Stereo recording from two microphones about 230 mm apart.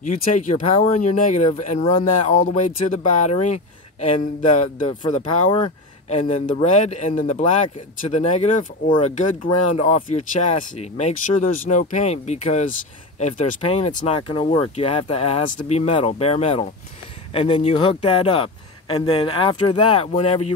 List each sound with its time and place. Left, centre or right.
0.0 s speech: left
6.0 s speech: left